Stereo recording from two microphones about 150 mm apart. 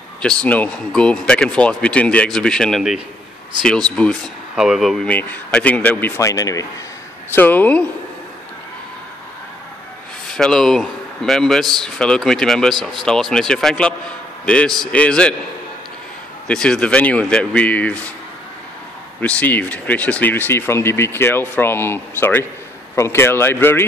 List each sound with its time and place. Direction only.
0.2 s speech: 5° left (ahead or behind); by 6.6 s 20° left (ahead or behind)
7.3 s speech: 10° left (ahead or behind)
10.2 s speech: 5° left (ahead or behind)
16.4 s speech: 5° left (ahead or behind)
19.2 s speech: 10° left (ahead or behind)